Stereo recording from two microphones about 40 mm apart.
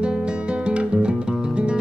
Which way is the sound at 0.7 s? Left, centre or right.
Right.